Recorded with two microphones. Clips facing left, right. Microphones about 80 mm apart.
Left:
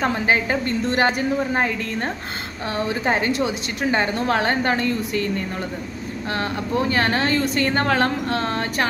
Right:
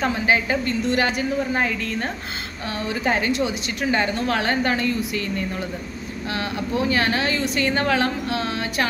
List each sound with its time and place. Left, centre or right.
0.0 s a woman's voice: left
6.3 s a woman's voice: left